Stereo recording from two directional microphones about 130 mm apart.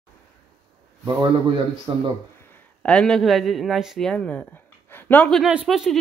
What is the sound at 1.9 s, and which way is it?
Speech, 35° right (ahead or behind).